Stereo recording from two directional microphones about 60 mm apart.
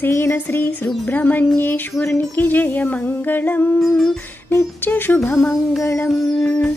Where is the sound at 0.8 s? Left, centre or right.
Left.